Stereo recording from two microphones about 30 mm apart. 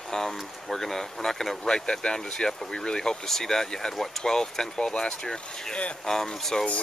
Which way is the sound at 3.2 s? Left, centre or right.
Centre.